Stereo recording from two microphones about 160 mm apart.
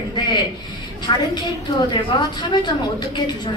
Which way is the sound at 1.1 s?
30° left (ahead or behind).